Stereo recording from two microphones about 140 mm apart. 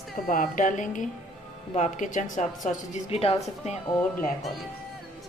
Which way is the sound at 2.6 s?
55° left (ahead or behind).